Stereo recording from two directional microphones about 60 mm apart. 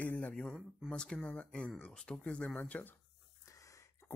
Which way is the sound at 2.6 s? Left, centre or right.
Left.